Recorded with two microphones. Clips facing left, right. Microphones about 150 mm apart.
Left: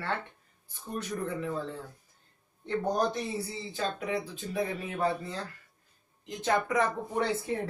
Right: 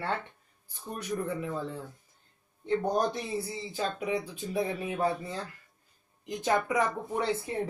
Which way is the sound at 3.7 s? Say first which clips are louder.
Right 1 dB; 15° right (ahead or behind).